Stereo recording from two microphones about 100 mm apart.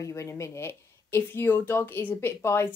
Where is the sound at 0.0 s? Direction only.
30° left (ahead or behind).